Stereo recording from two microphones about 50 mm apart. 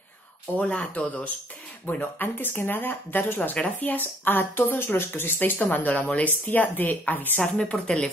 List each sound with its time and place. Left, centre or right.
0.6 s speech: left
2.2 s speech: left
4.0 s speech: left
7.8 s speech: centre